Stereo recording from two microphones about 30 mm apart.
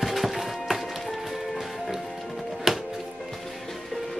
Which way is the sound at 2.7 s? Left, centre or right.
Centre.